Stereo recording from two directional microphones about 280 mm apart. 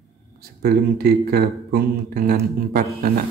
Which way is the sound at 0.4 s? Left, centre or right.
Right.